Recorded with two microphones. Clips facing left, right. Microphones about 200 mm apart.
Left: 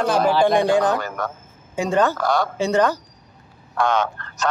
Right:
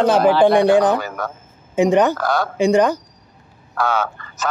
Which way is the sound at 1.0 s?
5° right (ahead or behind).